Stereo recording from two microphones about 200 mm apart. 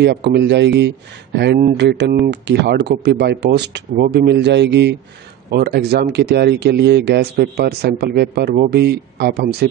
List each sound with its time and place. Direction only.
0.0 s speech: 55° right (ahead or behind)